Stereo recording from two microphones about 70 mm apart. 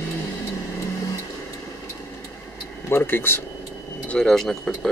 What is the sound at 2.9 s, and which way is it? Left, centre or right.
Speech, left.